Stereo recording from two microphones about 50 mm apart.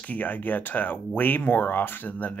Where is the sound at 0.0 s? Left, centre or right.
Left.